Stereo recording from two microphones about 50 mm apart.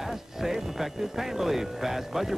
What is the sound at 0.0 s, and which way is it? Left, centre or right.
Speech, centre.